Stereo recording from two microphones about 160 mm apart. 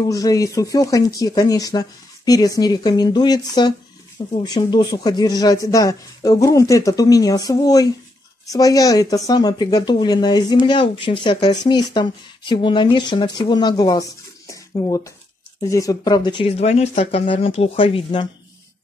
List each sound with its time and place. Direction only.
0.1 s speech: 20° left (ahead or behind)